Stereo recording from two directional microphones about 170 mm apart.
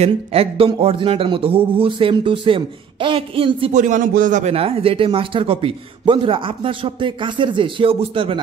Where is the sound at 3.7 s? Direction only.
45° right (ahead or behind); by 8.4 s 30° right (ahead or behind).